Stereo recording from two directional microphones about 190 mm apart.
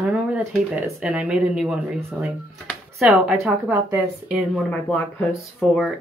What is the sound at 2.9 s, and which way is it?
Speech, centre (ahead or behind).